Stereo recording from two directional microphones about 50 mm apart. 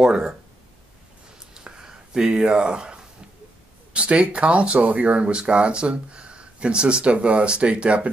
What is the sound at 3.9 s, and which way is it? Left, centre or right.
Speech, right.